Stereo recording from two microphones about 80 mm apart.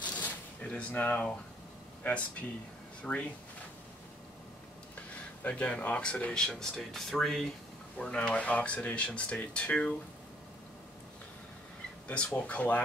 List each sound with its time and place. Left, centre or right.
0.0 s shuffling cards: centre
2.0 s speech: left
5.4 s speech: centre
12.1 s speech: centre